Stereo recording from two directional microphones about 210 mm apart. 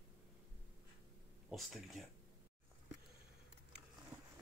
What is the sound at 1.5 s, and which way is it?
Speech, centre (ahead or behind).